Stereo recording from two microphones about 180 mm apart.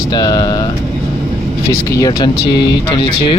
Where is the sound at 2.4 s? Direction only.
70° left (ahead or behind).